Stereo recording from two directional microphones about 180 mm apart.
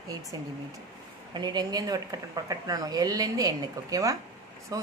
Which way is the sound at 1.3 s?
25° right (ahead or behind).